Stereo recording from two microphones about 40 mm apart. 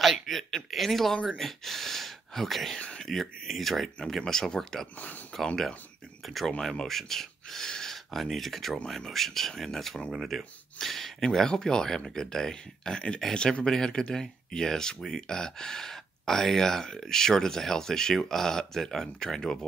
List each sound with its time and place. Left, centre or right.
0.0 s speech: centre